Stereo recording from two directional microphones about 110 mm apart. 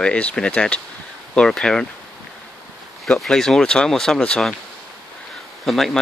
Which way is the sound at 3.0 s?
5° left (ahead or behind).